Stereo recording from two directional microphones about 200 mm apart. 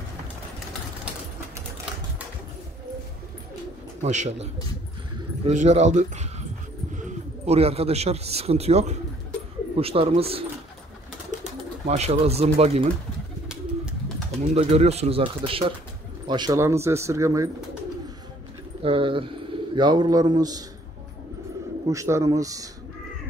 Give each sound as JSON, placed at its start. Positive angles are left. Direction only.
{"t": 4.0, "sound": "speech", "side_deg": -35}
{"t": 11.8, "sound": "speech", "side_deg": -35}
{"t": 14.5, "sound": "speech", "side_deg": -30}
{"t": 18.8, "sound": "speech", "side_deg": -25}
{"t": 21.8, "sound": "speech", "side_deg": -15}